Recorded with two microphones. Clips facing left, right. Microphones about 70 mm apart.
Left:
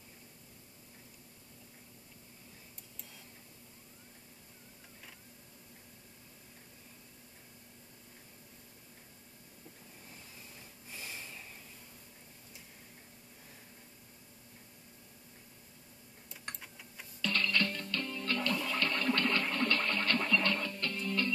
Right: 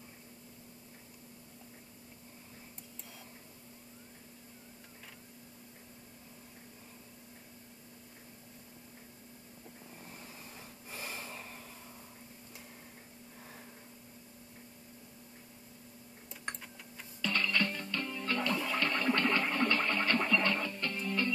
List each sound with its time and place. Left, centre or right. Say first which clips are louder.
10.9 s snort: right 3 dB; right
17.2 s music: even; centre